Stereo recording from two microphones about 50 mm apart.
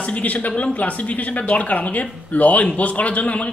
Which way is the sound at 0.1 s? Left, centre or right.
Left.